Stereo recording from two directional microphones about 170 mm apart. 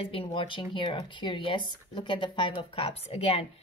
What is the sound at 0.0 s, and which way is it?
A woman's voice, 30° left (ahead or behind).